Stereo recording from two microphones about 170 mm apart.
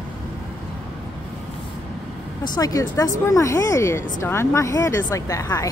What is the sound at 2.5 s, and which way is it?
Speech, 20° left (ahead or behind).